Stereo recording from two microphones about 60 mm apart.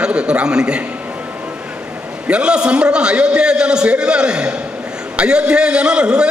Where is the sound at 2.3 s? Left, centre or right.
Centre.